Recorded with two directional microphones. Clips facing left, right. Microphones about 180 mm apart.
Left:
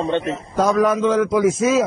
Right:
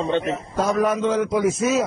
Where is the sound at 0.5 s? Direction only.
90° left.